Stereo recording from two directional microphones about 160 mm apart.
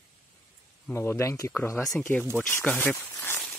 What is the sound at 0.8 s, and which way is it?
Speech, 15° left (ahead or behind).